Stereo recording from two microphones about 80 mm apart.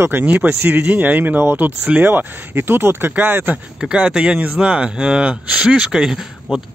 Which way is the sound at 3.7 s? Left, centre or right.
Centre.